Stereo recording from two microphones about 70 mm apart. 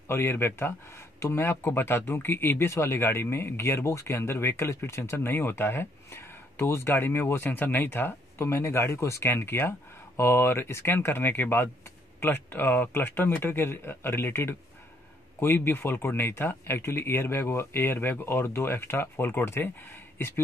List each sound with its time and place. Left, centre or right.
0.1 s speech: left